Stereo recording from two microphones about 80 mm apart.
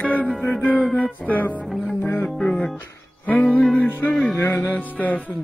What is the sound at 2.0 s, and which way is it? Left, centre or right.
Music, left.